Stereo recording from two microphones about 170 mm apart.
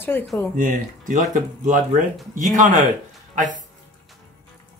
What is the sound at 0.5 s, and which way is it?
Speech, 50° right (ahead or behind).